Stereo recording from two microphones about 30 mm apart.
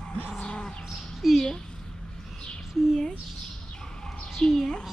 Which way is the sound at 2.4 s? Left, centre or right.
Left.